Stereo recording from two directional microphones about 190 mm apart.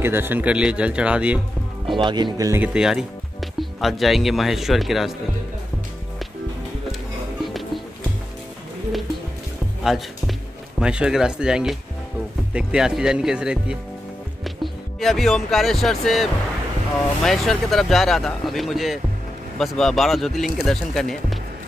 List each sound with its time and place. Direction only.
0.0 s speech: 10° right (ahead or behind)
2.0 s speech: 25° right (ahead or behind); by 5.1 s centre (ahead or behind)
9.8 s speech: centre (ahead or behind)